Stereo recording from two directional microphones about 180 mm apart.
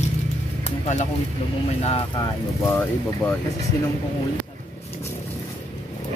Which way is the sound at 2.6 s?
10° left (ahead or behind).